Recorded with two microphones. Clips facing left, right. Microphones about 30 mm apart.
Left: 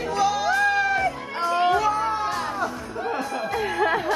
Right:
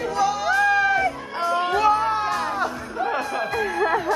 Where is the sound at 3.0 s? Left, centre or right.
Right.